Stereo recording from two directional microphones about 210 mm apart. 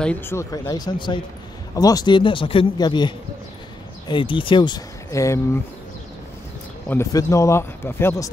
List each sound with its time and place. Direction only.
0.0 s speech: 10° left (ahead or behind)
6.9 s speech: 15° left (ahead or behind)